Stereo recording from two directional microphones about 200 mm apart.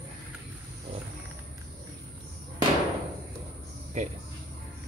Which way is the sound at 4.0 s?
35° right (ahead or behind).